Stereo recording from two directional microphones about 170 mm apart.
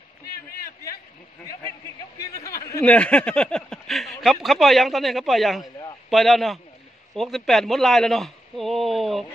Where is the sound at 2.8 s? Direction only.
5° left (ahead or behind).